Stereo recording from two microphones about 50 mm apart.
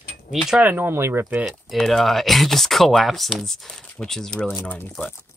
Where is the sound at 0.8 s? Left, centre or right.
Right.